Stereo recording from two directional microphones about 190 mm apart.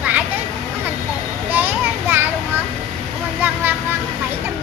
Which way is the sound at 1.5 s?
10° right (ahead or behind).